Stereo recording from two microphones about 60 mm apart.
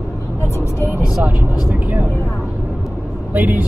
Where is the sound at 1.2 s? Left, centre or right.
Right.